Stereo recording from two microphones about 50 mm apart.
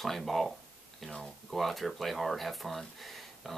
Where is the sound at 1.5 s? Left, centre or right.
Centre.